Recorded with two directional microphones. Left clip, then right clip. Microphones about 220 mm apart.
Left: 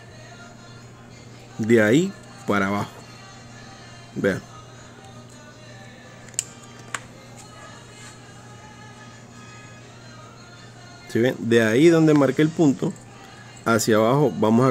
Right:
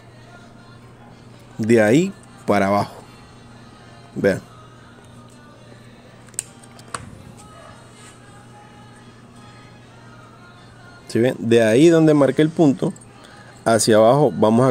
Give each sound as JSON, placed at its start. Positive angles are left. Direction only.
{"t": 1.6, "sound": "speech", "side_deg": -15}
{"t": 11.1, "sound": "speech", "side_deg": -15}
{"t": 13.7, "sound": "speech", "side_deg": -15}